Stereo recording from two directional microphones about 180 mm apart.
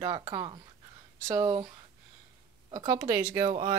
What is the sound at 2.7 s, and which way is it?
Speech, 20° right (ahead or behind).